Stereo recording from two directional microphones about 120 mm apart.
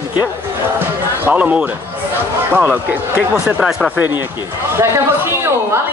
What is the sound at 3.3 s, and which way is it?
Speech, 5° right (ahead or behind).